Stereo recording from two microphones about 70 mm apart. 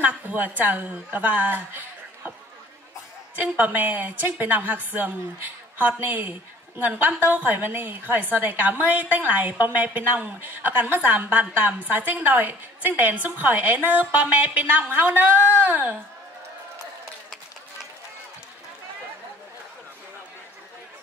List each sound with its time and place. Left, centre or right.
0.0 s a woman's voice: right
3.3 s a woman's voice: right